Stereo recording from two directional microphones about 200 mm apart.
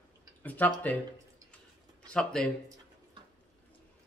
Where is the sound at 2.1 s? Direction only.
5° left (ahead or behind).